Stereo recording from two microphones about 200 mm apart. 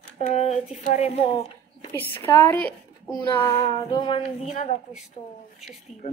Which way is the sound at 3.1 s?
25° left (ahead or behind).